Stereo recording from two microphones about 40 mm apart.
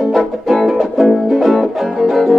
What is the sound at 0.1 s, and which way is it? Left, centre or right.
Music, centre.